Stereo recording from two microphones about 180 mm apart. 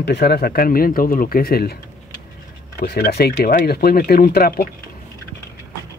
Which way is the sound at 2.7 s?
60° left (ahead or behind).